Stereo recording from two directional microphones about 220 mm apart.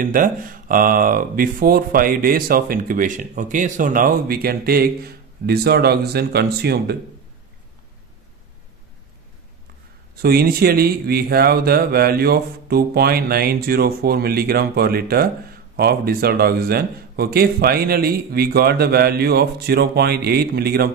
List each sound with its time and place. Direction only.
0.0 s speech: 40° right (ahead or behind)
10.2 s speech: 45° right (ahead or behind)